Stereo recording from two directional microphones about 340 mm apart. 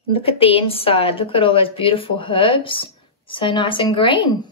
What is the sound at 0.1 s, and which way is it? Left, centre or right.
A woman's voice, centre.